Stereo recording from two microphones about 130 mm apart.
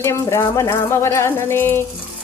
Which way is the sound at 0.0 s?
20° left (ahead or behind).